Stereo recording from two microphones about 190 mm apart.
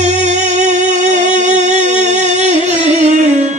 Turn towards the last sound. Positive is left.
turn(degrees=-40)  # may be behind; listen again after turning